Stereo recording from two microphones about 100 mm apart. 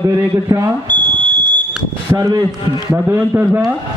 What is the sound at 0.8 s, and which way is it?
Smoke detector, 15° left (ahead or behind).